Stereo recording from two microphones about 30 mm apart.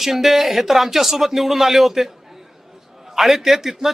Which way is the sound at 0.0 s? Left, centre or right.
Centre.